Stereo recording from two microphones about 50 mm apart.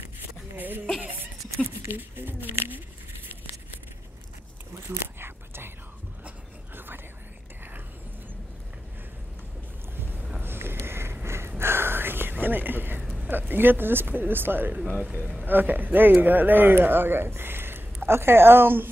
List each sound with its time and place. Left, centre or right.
0.6 s speech: right
2.0 s speech: right
5.0 s whispering: right
10.4 s boat: right
11.2 s whispering: right
13.3 s speech: right